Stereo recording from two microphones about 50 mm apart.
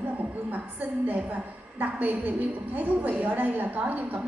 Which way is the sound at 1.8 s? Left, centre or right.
Right.